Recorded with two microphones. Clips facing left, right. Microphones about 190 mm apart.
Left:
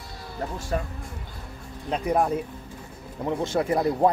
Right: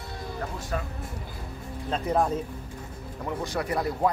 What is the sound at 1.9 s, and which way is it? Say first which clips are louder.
Speech: left 2 dB; 15° left (ahead or behind).